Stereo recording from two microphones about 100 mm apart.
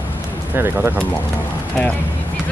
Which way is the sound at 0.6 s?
25° right (ahead or behind).